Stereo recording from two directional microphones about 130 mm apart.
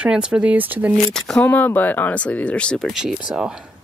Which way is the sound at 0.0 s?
5° right (ahead or behind).